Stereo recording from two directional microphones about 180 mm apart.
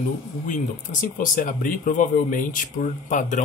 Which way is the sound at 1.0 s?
50° left (ahead or behind).